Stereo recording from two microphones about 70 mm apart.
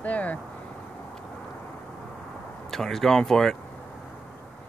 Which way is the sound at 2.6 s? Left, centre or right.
Centre.